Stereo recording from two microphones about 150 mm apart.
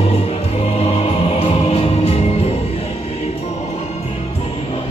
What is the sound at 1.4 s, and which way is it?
Music, 40° left (ahead or behind).